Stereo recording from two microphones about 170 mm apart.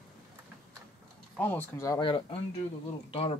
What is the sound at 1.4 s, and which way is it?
Speech, 10° left (ahead or behind).